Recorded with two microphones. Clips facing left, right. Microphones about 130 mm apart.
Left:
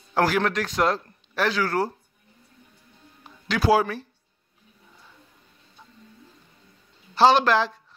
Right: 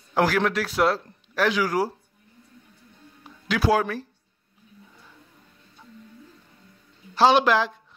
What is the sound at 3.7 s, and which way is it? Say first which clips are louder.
Speech: left 3 dB; 5° left (ahead or behind).